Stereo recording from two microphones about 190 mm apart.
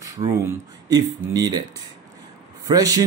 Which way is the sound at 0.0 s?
15° right (ahead or behind).